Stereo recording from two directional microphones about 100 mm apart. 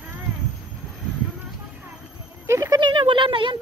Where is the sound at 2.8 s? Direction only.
50° right (ahead or behind).